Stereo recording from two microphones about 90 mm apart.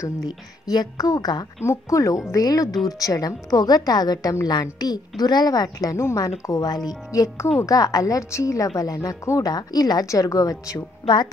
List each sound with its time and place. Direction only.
0.7 s a woman's voice: 45° left (ahead or behind)